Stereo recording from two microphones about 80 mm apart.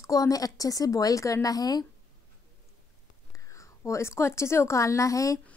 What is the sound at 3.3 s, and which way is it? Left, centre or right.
A woman's voice, left.